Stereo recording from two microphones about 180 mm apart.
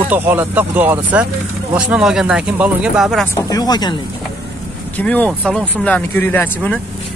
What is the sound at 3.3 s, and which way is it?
Speech, 20° left (ahead or behind).